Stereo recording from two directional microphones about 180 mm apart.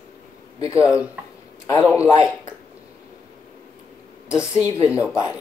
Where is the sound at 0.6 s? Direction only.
15° left (ahead or behind).